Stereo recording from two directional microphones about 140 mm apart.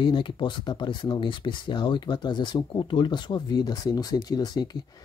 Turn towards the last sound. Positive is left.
turn(degrees=30)  # may be behind; listen again after turning